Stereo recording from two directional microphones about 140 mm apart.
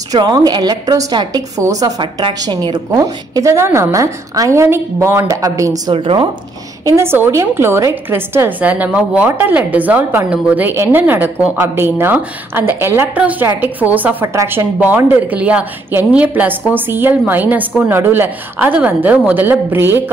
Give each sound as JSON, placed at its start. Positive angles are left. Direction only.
{"t": 0.1, "sound": "a woman's voice", "side_deg": -30}
{"t": 5.9, "sound": "speech", "side_deg": -40}
{"t": 7.0, "sound": "a woman's voice", "side_deg": -15}